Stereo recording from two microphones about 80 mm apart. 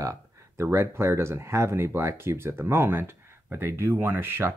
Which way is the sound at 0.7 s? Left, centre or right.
Right.